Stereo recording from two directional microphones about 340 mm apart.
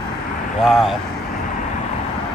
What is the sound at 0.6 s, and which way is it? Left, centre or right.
Speech, centre.